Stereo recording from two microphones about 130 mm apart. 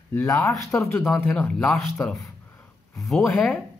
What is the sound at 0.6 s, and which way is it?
Speech, 20° left (ahead or behind).